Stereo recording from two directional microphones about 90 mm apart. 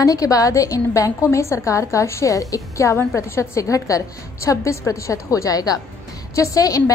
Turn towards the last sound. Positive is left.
turn(degrees=40)  # may be behind; listen again after turning